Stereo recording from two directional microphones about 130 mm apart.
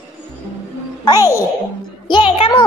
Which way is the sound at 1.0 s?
25° left (ahead or behind).